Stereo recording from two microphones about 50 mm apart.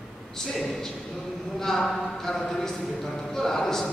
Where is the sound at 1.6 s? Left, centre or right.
Centre.